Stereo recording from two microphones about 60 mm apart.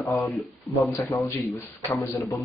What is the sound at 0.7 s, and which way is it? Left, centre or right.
Speech, left.